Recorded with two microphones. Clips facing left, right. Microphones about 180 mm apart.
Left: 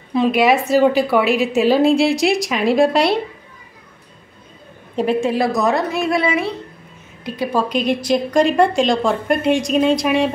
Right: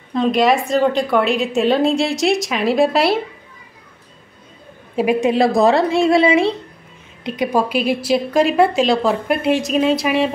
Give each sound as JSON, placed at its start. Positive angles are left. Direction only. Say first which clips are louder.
{"t": 0.1, "sound": "a woman's voice", "louder": "even", "side_deg": 5}
{"t": 4.9, "sound": "a woman's voice", "louder": "right 2 dB", "side_deg": -10}
{"t": 5.3, "sound": "a woman's voice", "louder": "right 4 dB", "side_deg": -25}
{"t": 7.6, "sound": "a woman's voice", "louder": "even", "side_deg": -5}